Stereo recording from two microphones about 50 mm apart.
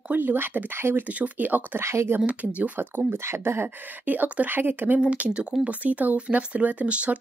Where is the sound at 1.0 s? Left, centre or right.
Right.